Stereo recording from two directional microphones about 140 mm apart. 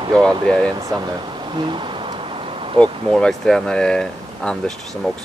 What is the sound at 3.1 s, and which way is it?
Speech, 5° left (ahead or behind).